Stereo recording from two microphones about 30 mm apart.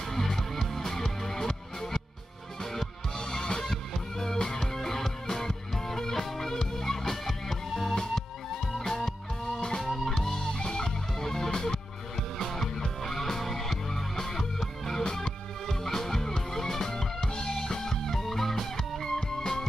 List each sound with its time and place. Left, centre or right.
0.1 s music: centre
3.3 s music: left
9.5 s music: left
10.0 s music: centre